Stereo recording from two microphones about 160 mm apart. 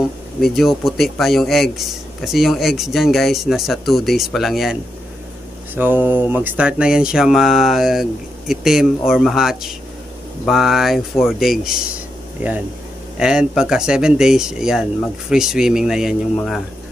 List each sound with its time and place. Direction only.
0.4 s speech: centre (ahead or behind)
5.8 s speech: 10° right (ahead or behind)